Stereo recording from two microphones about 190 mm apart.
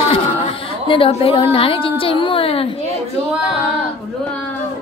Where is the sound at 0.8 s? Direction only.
30° left (ahead or behind).